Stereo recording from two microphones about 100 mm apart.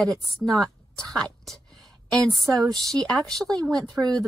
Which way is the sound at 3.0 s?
5° left (ahead or behind).